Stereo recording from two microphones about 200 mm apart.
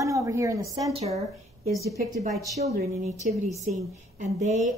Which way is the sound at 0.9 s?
30° right (ahead or behind).